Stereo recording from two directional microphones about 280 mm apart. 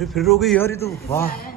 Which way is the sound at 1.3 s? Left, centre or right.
Left.